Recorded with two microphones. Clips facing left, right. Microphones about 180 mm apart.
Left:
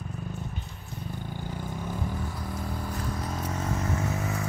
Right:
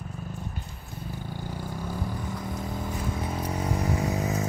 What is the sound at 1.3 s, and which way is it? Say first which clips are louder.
Vehicle: right 1 dB; 10° right (ahead or behind).